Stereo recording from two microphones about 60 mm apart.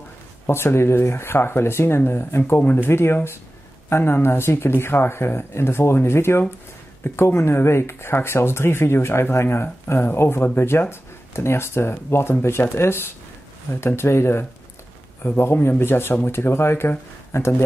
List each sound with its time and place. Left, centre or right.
0.5 s speech: left
2.9 s speech: left